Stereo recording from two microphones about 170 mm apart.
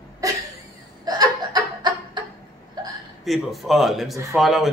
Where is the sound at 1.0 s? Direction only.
20° right (ahead or behind).